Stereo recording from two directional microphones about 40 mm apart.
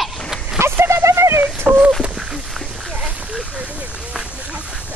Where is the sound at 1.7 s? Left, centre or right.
Right.